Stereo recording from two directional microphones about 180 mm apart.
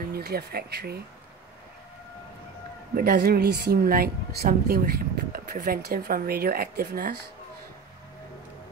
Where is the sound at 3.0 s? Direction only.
55° right (ahead or behind).